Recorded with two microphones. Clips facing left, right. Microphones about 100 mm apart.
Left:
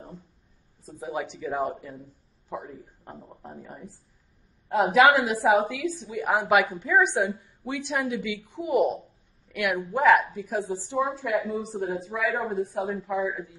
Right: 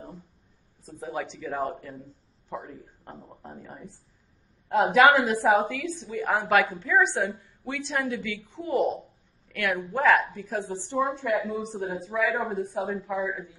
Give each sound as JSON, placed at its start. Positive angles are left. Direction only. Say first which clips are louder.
{"t": 0.8, "sound": "a woman's voice", "louder": "left 1 dB", "side_deg": 15}
{"t": 5.0, "sound": "a woman's voice", "louder": "right 1 dB", "side_deg": 5}